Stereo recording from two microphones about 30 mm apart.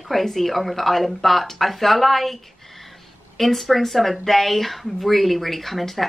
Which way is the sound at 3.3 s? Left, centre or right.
Centre.